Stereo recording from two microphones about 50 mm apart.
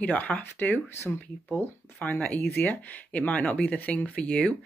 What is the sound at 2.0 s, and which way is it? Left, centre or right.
Speech, left.